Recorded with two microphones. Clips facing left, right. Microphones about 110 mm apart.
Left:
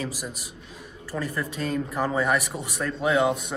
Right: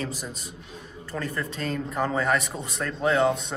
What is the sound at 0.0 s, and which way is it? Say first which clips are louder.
Speech: even; 10° left (ahead or behind).